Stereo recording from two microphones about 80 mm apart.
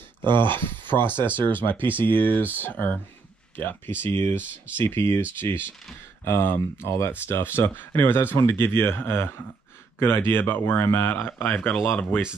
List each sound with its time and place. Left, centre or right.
0.2 s speech: right
0.6 s speech: left